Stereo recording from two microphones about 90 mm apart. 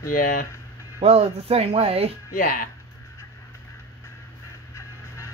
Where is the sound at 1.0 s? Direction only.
90° right.